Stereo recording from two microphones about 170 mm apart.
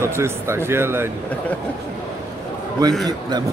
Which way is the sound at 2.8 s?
20° right (ahead or behind).